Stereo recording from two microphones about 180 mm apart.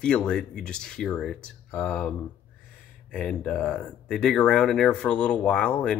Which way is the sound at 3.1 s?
5° left (ahead or behind).